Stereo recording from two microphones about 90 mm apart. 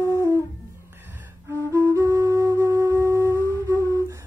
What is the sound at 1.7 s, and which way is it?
Flute, 30° right (ahead or behind).